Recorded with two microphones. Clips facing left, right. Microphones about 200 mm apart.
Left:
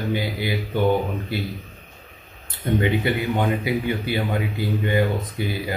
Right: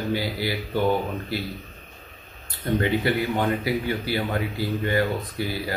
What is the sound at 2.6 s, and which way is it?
Speech, 20° left (ahead or behind).